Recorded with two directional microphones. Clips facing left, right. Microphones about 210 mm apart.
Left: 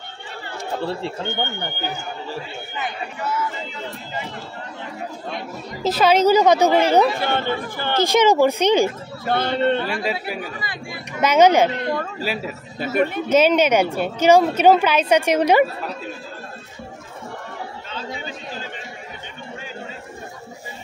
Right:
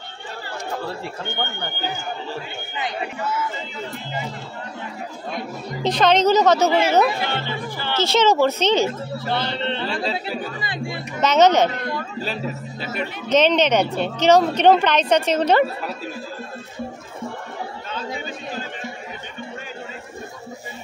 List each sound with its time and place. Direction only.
0.8 s speech: 25° left (ahead or behind)
5.8 s a woman's voice: 5° left (ahead or behind)
7.2 s speech: 50° left (ahead or behind)
8.0 s a woman's voice: 15° left (ahead or behind)
9.3 s speech: 50° left (ahead or behind)
10.2 s a woman's voice: 10° left (ahead or behind)
10.6 s speech: 25° right (ahead or behind)
11.1 s a woman's voice: 10° left (ahead or behind)
12.8 s speech: 50° left (ahead or behind)
13.3 s a woman's voice: 10° left (ahead or behind)